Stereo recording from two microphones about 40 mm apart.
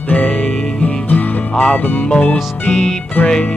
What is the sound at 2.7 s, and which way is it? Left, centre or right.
Music, centre.